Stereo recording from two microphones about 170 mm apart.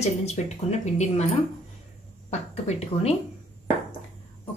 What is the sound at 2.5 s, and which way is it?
Speech, 35° left (ahead or behind).